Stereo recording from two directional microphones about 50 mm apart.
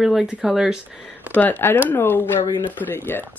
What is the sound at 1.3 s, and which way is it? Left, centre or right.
Speech, left.